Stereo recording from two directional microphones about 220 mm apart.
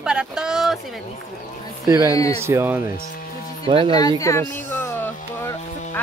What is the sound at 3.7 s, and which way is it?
Speech, 25° right (ahead or behind).